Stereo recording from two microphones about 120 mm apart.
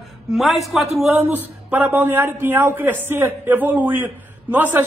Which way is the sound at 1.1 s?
15° right (ahead or behind).